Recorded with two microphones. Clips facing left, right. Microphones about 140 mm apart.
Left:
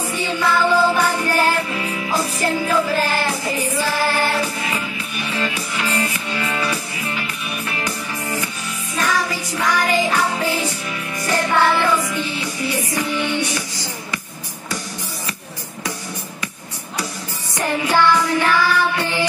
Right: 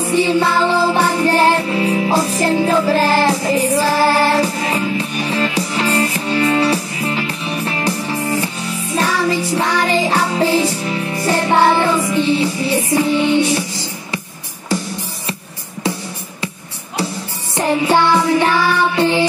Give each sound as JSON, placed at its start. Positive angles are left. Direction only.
{"t": 0.0, "sound": "music", "side_deg": -30}
{"t": 17.6, "sound": "music", "side_deg": -25}